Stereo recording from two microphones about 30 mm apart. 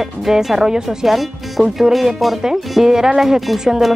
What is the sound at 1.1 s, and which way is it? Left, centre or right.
Speech, centre.